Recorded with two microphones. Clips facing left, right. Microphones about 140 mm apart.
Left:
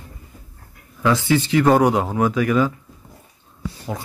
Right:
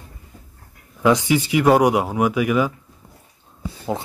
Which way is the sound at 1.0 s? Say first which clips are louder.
Right 1 dB; 15° right (ahead or behind).